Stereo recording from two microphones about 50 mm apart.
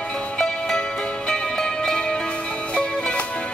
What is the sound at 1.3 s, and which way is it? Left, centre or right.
Music, centre.